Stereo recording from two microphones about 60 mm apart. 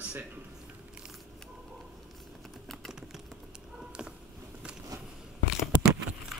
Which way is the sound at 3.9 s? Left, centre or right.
Centre.